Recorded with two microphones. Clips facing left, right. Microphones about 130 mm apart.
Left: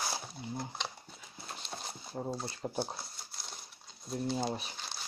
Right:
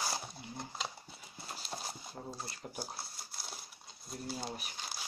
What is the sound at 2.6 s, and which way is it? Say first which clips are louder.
Speech: left 12 dB; 40° left (ahead or behind).